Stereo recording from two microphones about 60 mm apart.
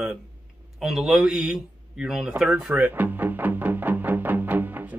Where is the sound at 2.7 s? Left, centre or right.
Right.